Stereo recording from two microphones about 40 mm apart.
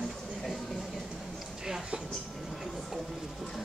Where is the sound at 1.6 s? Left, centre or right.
Centre.